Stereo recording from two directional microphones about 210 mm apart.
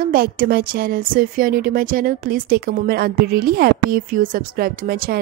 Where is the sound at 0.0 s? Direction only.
45° right (ahead or behind).